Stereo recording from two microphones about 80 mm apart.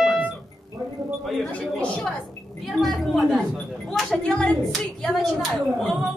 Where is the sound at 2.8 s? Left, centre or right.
Centre.